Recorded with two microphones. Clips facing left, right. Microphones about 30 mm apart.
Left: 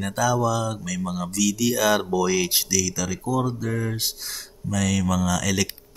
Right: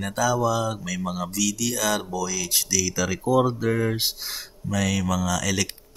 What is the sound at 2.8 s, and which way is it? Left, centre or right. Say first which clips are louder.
Speech: right 3 dB; centre.